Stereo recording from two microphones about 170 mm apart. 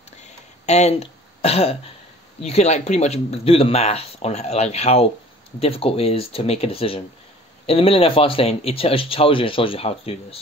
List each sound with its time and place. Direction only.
0.2 s throat clearing: 40° left (ahead or behind)
2.4 s speech: 40° left (ahead or behind)